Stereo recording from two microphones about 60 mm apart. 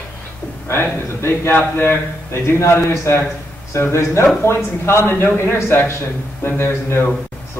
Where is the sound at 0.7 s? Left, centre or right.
Left.